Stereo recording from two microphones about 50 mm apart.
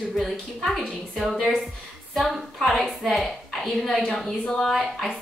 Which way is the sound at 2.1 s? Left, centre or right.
Centre.